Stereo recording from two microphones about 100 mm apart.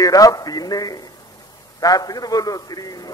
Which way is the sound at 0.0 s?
35° left (ahead or behind).